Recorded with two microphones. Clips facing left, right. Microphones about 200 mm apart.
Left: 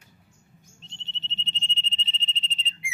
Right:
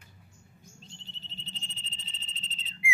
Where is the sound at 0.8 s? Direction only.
25° left (ahead or behind).